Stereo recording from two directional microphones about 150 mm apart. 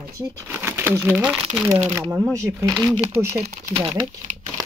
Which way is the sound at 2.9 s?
40° right (ahead or behind).